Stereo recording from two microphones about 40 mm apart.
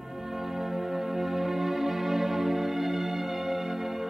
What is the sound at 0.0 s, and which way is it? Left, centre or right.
Music, centre.